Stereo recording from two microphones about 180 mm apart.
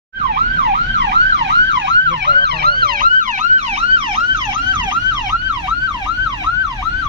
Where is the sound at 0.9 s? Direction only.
80° right.